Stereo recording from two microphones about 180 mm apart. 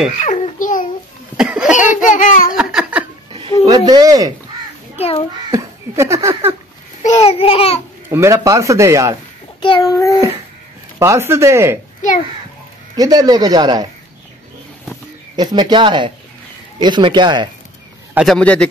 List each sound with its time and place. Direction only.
0.2 s babbling: 45° left (ahead or behind)
1.3 s laughter: 5° right (ahead or behind)
1.8 s a sound: 45° left (ahead or behind)
2.5 s laughter: 5° right (ahead or behind)
3.6 s speech: 20° right (ahead or behind)
5.5 s speech: 15° right (ahead or behind)
7.0 s babbling: 40° left (ahead or behind)
8.1 s speech: 15° right (ahead or behind)
9.6 s child singing: 25° left (ahead or behind)
11.0 s speech: 15° right (ahead or behind)
12.9 s speech: 20° right (ahead or behind)
15.3 s speech: 25° right (ahead or behind)
18.1 s a man's voice: centre (ahead or behind)